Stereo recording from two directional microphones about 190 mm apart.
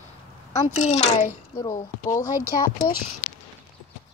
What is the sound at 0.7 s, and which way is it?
Speech, 40° left (ahead or behind).